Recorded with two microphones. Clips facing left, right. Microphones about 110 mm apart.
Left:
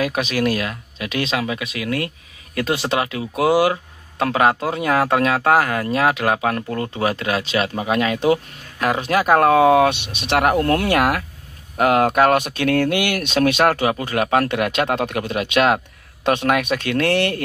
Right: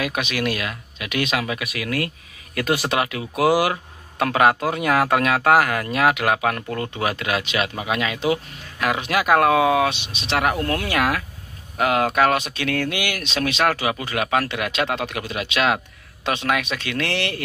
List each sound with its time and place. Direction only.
0.0 s speech: 35° left (ahead or behind)